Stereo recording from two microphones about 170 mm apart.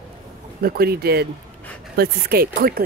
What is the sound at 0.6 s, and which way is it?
Speech, 65° right (ahead or behind).